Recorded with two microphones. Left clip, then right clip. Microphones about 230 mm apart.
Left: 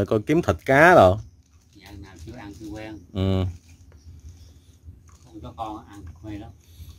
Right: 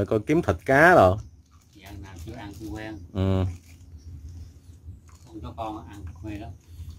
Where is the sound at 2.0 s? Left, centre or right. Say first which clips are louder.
Even; centre.